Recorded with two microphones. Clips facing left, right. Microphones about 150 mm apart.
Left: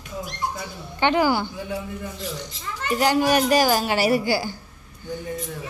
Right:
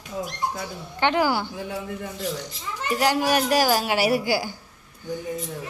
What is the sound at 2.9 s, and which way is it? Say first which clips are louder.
Speech: left 2 dB; 5° right (ahead or behind).